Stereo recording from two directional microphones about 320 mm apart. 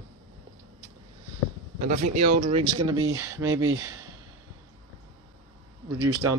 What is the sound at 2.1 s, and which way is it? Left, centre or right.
Speech, right.